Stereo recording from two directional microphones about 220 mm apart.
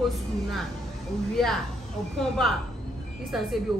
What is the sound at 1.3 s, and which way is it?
A woman's voice, centre (ahead or behind).